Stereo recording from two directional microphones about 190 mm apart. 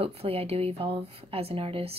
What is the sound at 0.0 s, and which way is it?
Speech, 30° right (ahead or behind).